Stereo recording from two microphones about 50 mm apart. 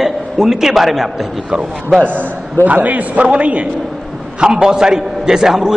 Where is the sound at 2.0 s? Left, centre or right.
Right.